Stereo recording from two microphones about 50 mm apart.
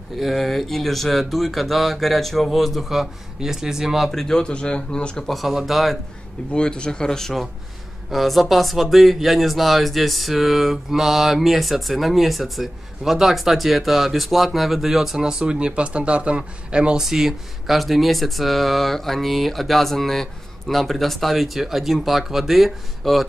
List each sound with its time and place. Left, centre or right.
0.2 s speech: centre
4.1 s speech: centre
5.2 s speech: centre
6.5 s speech: centre
8.1 s speech: centre
17.0 s speech: centre